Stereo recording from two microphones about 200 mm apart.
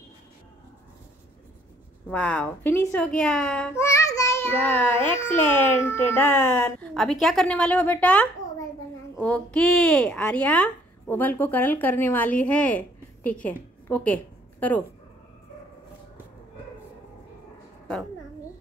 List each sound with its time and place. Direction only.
2.0 s a child's voice: 5° left (ahead or behind)